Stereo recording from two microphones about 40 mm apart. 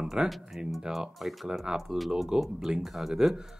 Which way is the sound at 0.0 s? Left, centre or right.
Centre.